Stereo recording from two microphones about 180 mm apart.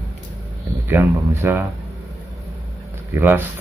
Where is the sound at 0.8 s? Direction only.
10° right (ahead or behind).